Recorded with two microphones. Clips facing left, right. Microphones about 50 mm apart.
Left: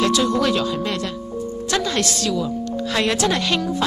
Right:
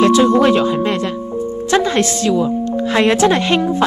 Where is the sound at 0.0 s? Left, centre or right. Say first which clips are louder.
Right 8 dB; right.